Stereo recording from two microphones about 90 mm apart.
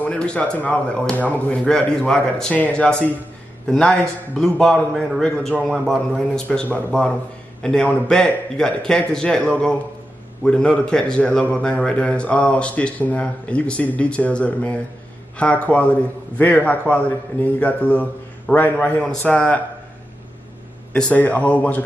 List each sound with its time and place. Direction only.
0.0 s a man's voice: 10° left (ahead or behind)
20.9 s speech: 15° left (ahead or behind)